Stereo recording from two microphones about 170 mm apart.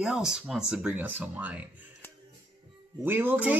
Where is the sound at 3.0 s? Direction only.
10° right (ahead or behind).